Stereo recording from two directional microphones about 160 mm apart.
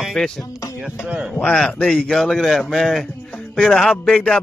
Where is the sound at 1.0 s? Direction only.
5° right (ahead or behind).